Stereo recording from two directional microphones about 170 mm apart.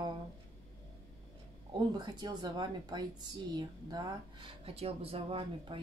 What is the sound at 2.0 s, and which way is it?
Speech, 25° right (ahead or behind).